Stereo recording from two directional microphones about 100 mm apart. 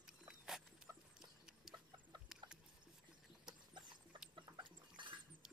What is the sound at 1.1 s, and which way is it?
Chicken, 5° right (ahead or behind).